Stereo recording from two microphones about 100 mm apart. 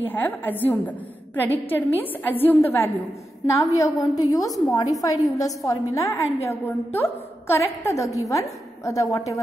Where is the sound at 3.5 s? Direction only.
30° left (ahead or behind).